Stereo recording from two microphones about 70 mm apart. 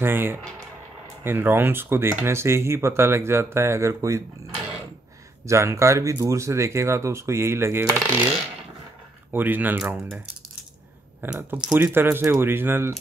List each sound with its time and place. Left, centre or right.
0.0 s speech: right
5.5 s speech: right
9.3 s speech: right
11.5 s speech: centre
11.8 s speech: right